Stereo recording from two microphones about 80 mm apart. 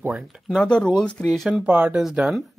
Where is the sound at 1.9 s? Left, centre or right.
Centre.